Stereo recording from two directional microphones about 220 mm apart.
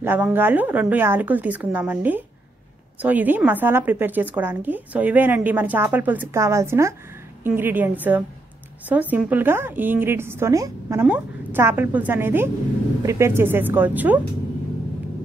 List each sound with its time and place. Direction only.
0.0 s a woman's voice: 10° right (ahead or behind)